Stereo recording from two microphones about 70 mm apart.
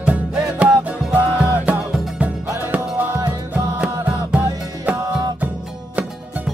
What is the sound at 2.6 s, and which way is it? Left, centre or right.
Music, right.